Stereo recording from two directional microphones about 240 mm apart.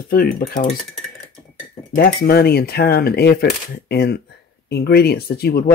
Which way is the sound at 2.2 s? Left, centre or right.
Left.